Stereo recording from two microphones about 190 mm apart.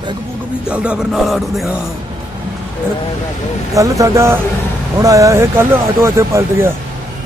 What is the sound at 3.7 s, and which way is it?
Speech, 15° right (ahead or behind).